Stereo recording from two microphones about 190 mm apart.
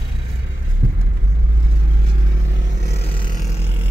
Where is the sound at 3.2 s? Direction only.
40° left (ahead or behind).